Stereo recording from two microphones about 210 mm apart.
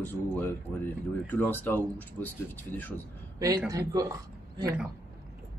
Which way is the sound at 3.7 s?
15° right (ahead or behind).